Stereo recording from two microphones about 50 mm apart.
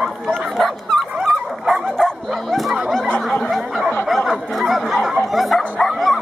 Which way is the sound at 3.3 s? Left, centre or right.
Centre.